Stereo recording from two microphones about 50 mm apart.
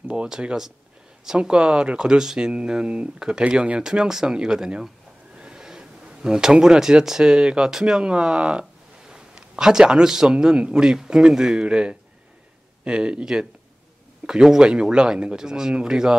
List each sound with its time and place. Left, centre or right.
0.1 s speech: right